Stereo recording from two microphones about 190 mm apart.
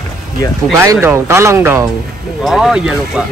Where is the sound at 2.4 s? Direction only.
Centre (ahead or behind).